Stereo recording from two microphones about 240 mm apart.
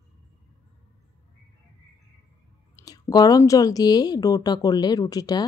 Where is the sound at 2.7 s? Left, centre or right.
Centre.